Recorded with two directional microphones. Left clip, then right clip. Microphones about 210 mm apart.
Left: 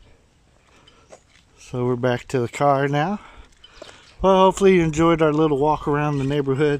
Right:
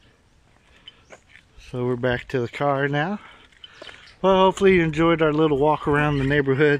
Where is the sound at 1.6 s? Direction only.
15° left (ahead or behind).